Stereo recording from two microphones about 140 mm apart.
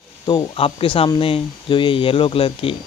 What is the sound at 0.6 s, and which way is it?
Speech, 40° left (ahead or behind).